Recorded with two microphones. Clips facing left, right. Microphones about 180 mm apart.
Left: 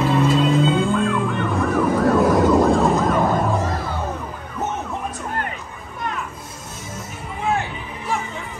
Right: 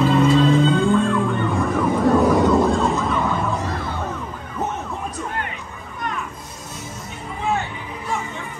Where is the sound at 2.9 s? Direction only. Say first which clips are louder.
Left 3 dB; 40° left (ahead or behind).